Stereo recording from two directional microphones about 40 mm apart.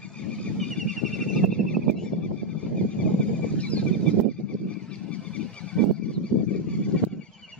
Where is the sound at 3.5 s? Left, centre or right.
Left.